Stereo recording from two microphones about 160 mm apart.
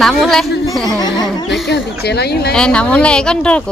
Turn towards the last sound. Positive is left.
turn(degrees=5)  # may be behind; listen again after turning